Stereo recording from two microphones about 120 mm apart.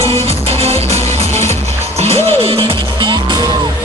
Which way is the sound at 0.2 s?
55° right (ahead or behind).